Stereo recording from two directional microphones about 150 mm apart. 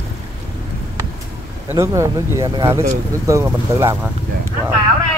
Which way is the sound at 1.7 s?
20° right (ahead or behind).